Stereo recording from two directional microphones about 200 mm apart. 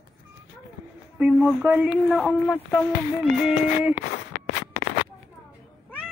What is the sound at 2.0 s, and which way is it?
Speech, 5° left (ahead or behind).